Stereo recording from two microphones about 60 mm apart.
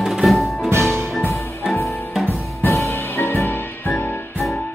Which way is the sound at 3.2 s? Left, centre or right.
Left.